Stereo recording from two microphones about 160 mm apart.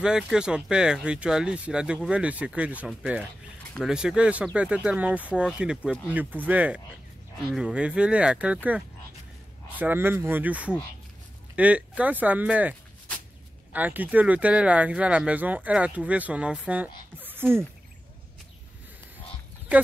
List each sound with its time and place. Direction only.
0.0 s speech: 5° right (ahead or behind)
13.7 s speech: 10° right (ahead or behind)